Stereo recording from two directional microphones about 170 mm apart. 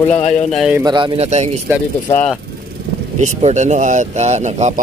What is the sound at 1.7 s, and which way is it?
Speech, 15° right (ahead or behind).